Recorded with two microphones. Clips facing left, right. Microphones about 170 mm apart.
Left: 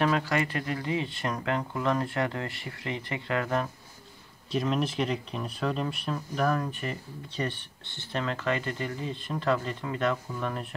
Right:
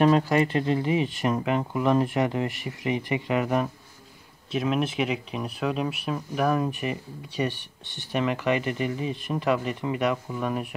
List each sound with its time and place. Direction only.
0.0 s speech: 20° right (ahead or behind)
4.5 s speech: 5° right (ahead or behind)